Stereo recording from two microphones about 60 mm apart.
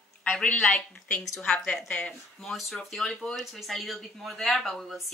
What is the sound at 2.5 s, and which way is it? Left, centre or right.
A woman's voice, centre.